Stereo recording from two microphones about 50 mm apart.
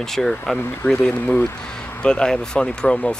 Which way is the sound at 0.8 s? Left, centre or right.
Centre.